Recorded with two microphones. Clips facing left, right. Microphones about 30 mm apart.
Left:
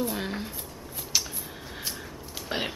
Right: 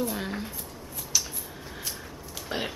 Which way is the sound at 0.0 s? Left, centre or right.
Centre.